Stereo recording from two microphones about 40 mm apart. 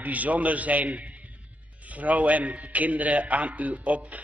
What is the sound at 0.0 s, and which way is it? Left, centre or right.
A man's voice, right.